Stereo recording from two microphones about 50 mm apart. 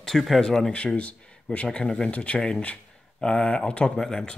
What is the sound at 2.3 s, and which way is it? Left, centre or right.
Speech, centre.